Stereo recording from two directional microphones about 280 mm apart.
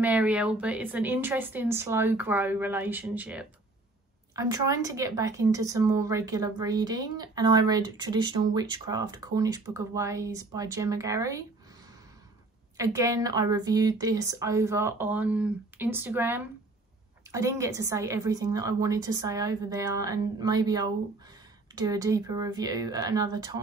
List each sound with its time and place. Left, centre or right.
0.0 s a woman's voice: centre
12.7 s a woman's voice: centre